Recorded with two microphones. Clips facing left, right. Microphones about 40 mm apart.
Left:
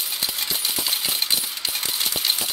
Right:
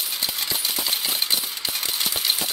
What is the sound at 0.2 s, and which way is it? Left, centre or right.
Coin, centre.